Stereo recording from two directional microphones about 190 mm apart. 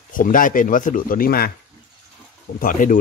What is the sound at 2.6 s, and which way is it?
Speech, 45° left (ahead or behind).